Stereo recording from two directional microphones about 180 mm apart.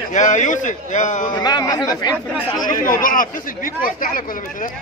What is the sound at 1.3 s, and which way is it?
Speech, 20° left (ahead or behind).